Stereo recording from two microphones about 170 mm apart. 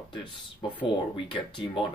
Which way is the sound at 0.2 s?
25° left (ahead or behind).